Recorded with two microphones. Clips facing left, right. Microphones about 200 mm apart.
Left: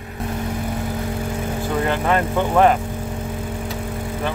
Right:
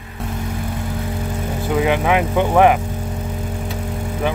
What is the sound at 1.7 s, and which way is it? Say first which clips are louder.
Speech: right 3 dB; 10° right (ahead or behind).